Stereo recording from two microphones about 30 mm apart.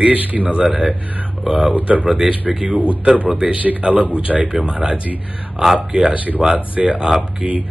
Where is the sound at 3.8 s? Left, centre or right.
Right.